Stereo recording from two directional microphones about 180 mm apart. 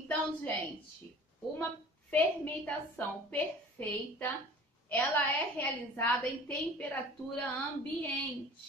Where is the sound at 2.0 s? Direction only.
10° left (ahead or behind).